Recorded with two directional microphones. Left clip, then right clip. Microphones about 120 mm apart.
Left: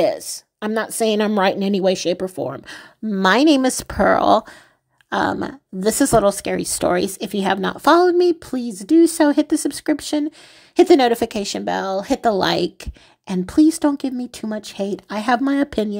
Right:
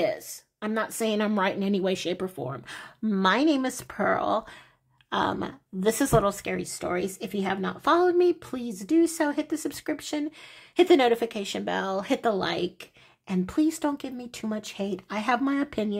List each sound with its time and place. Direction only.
0.0 s speech: 50° left (ahead or behind)
3.2 s a woman's voice: 65° left (ahead or behind)
5.1 s speech: 45° left (ahead or behind)
11.5 s speech: 35° left (ahead or behind)
12.3 s a woman's voice: 60° left (ahead or behind)
13.3 s speech: 50° left (ahead or behind)